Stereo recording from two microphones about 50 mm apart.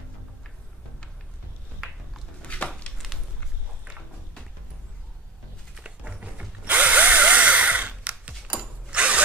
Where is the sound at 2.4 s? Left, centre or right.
Left.